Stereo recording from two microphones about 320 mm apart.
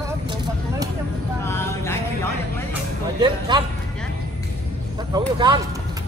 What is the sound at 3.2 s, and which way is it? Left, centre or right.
Speech, centre.